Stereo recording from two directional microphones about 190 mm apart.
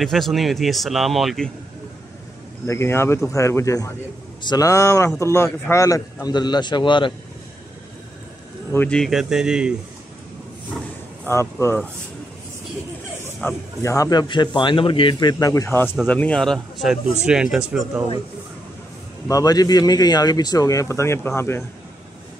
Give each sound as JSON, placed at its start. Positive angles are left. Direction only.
{"t": 0.0, "sound": "speech", "side_deg": 0}
{"t": 2.6, "sound": "speech", "side_deg": 15}
{"t": 8.7, "sound": "speech", "side_deg": 5}
{"t": 11.6, "sound": "speech", "side_deg": 10}
{"t": 13.4, "sound": "speech", "side_deg": 15}
{"t": 19.2, "sound": "speech", "side_deg": 20}